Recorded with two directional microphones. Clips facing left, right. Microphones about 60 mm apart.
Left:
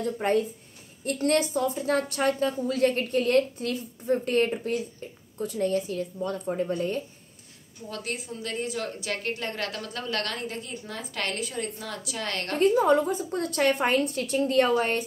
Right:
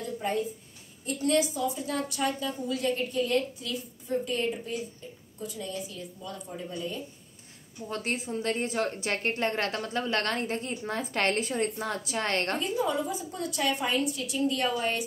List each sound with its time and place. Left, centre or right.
0.0 s a woman's voice: left
7.9 s a woman's voice: right
12.5 s a woman's voice: left